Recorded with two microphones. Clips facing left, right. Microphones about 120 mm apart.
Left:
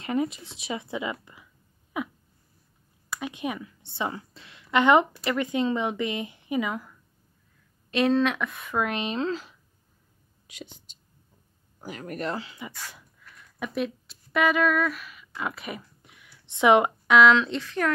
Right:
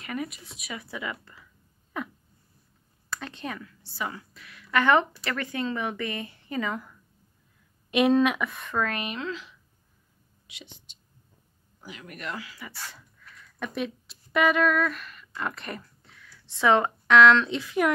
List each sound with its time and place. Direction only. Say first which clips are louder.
0.0 s a woman's voice: left 7 dB; 25° left (ahead or behind); by 6.9 s 5° left (ahead or behind)
7.9 s speech: right 1 dB; 15° right (ahead or behind)
8.7 s speech: left 3 dB; 20° left (ahead or behind)
13.7 s speech: left 3 dB; centre (ahead or behind); by 17.2 s 15° left (ahead or behind)
17.2 s speech: even; centre (ahead or behind)